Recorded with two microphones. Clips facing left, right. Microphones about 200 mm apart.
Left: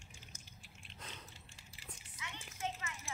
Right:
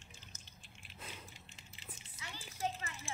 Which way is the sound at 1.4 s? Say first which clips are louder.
Right 1 dB; 20° right (ahead or behind).